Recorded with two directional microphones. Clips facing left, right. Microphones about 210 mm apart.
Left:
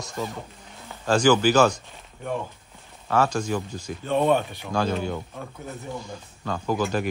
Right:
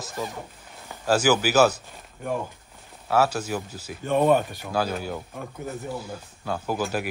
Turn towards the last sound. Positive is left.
turn(degrees=-10)  # may be behind; listen again after turning